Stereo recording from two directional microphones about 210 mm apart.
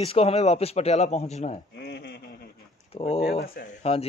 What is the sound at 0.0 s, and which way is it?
Speech, 25° left (ahead or behind).